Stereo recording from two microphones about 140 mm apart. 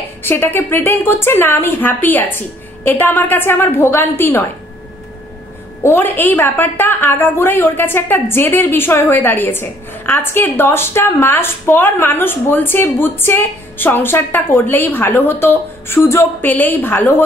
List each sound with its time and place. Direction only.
0.2 s a woman's voice: 15° left (ahead or behind)
5.8 s a woman's voice: 20° left (ahead or behind)